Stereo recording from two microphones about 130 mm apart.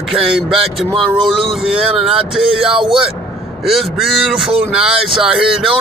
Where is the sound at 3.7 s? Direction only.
Centre (ahead or behind).